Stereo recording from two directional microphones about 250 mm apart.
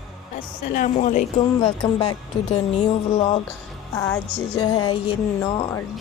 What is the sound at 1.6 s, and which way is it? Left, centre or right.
Speech, centre.